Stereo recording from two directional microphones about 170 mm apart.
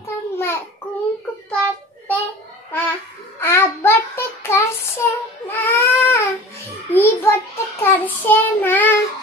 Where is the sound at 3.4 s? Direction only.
15° left (ahead or behind).